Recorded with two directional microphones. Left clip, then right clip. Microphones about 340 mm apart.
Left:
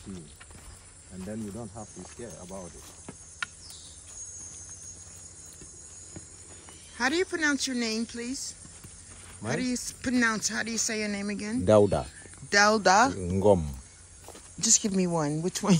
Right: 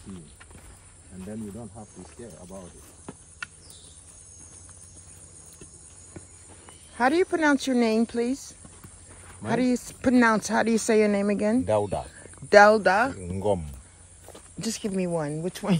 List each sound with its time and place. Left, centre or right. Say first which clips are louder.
1.2 s speech: even; centre
7.0 s speech: right 5 dB; centre
9.4 s speech: right 6 dB; centre
11.6 s speech: left 4 dB; left
12.4 s speech: right 6 dB; centre
13.2 s speech: left 4 dB; left
14.2 s speech: left 4 dB; centre